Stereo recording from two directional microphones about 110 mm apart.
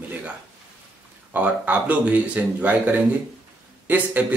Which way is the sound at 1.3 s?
15° right (ahead or behind).